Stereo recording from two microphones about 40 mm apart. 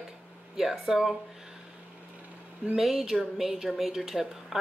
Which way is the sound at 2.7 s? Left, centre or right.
Centre.